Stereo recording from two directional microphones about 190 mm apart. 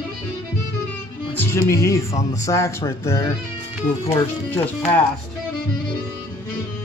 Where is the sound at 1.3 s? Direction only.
15° left (ahead or behind).